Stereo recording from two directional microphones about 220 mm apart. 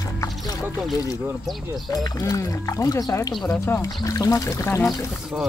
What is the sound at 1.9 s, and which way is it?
Speech, 15° left (ahead or behind).